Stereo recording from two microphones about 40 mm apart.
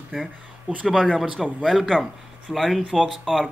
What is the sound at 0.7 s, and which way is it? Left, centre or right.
Speech, right.